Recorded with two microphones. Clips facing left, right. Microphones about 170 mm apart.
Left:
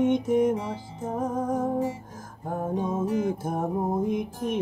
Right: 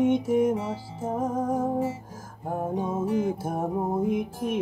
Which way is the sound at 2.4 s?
10° right (ahead or behind).